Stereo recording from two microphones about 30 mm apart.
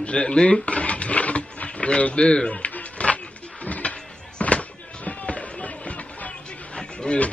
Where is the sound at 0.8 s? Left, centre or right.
Left.